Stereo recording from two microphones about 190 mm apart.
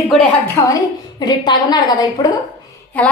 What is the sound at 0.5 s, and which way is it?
A woman's voice, 20° left (ahead or behind).